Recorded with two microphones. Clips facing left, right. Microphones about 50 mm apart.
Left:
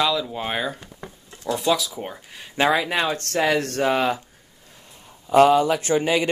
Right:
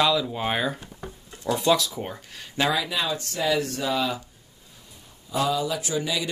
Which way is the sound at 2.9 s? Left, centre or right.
Left.